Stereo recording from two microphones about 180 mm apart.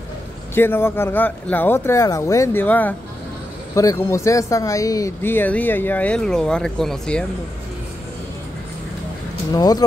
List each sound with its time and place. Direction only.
0.6 s speech: 10° left (ahead or behind)
9.5 s speech: 20° left (ahead or behind)